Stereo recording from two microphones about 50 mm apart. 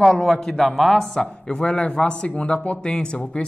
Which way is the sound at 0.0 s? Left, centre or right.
Centre.